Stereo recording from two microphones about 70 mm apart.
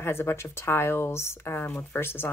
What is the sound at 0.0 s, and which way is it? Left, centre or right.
Speech, left.